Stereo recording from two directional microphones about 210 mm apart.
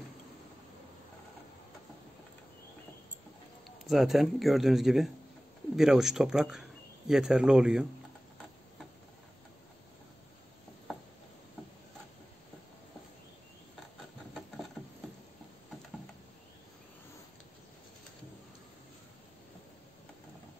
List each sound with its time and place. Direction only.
3.6 s a man's voice: centre (ahead or behind)